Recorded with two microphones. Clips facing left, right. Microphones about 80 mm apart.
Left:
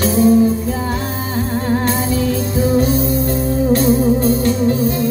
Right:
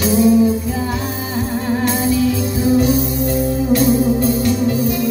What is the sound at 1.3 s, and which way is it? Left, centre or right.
Music, left.